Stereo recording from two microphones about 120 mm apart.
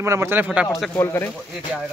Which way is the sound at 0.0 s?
20° right (ahead or behind).